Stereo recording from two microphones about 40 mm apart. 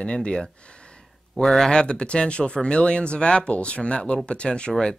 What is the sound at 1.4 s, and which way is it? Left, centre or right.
Speech, centre.